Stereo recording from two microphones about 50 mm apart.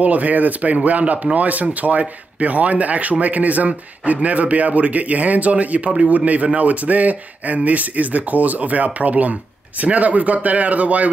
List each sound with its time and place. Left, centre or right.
0.0 s speech: right